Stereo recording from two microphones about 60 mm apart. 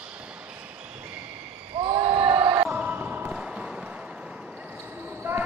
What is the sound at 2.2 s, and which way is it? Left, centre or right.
Basketball bounce, right.